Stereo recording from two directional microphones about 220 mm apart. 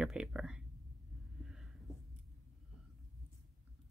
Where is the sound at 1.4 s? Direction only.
5° right (ahead or behind).